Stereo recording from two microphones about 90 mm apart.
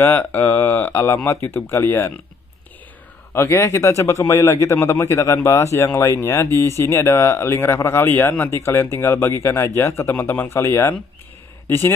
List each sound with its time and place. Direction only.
0.0 s speech: 25° left (ahead or behind)
3.3 s speech: 30° left (ahead or behind)